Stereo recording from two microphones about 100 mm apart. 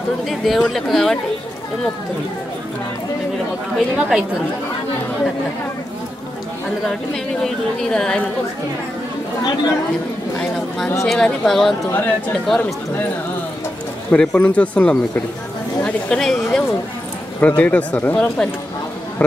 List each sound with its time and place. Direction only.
0.2 s speech: centre (ahead or behind)
3.7 s speech: 5° right (ahead or behind)
7.4 s speech: 5° left (ahead or behind)
11.1 s speech: 5° left (ahead or behind)
14.1 s a woman's voice: 10° left (ahead or behind)
17.4 s speech: 15° left (ahead or behind)